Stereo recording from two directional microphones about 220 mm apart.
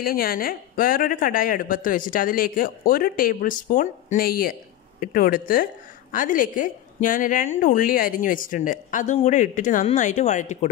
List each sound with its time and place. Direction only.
0.0 s a woman's voice: 40° left (ahead or behind)